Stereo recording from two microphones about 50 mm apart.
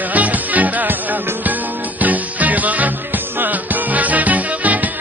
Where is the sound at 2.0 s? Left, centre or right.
Right.